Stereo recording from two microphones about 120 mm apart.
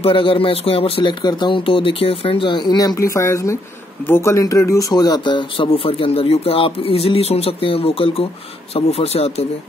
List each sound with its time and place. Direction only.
0.0 s speech: 45° left (ahead or behind)